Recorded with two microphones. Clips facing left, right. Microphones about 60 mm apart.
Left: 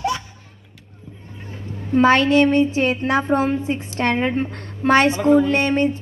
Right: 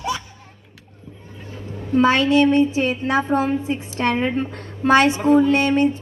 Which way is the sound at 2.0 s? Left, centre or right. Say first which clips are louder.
Left 1 dB; left.